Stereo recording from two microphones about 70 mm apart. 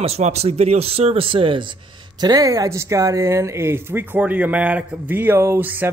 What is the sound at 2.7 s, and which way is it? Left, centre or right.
Speech, right.